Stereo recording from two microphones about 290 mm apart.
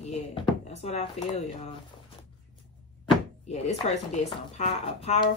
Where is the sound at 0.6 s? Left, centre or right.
Left.